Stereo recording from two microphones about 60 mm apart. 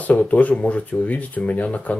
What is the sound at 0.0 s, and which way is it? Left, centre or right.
Speech, left.